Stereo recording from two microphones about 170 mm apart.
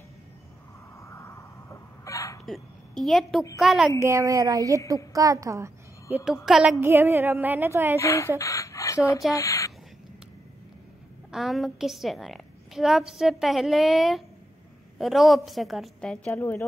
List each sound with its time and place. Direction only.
0.9 s a sound: 15° left (ahead or behind)
2.4 s a woman's voice: centre (ahead or behind)
4.0 s a woman's voice: 20° right (ahead or behind); by 6.8 s centre (ahead or behind)
6.8 s music: 15° right (ahead or behind)
8.0 s a woman's voice: 15° left (ahead or behind)
11.3 s a woman's voice: centre (ahead or behind)
16.3 s a woman's voice: 15° left (ahead or behind)